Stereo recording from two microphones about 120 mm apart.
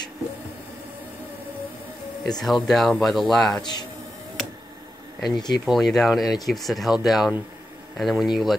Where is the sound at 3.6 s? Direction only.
35° left (ahead or behind).